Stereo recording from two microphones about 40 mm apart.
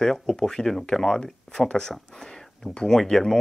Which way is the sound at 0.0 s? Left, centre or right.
Centre.